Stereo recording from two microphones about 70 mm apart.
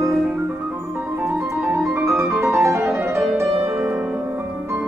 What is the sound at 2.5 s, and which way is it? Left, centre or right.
Music, right.